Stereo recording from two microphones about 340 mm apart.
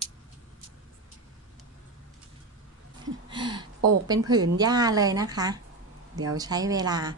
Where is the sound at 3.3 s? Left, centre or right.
Centre.